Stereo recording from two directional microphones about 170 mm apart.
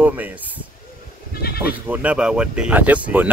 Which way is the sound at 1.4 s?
65° left (ahead or behind).